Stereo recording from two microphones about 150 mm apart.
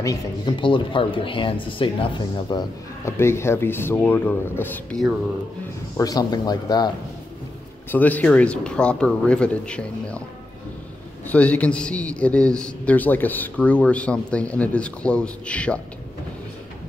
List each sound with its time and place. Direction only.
0.0 s speech: 25° left (ahead or behind)
3.1 s a man's voice: 15° left (ahead or behind)
5.9 s speech: 25° left (ahead or behind)
7.9 s a man's voice: 10° left (ahead or behind)
11.2 s a man's voice: 10° left (ahead or behind)